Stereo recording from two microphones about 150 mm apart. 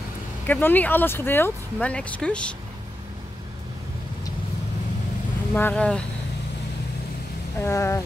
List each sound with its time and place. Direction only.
0.5 s speech: 10° left (ahead or behind)
5.5 s speech: 10° left (ahead or behind)
7.6 s speech: 20° left (ahead or behind)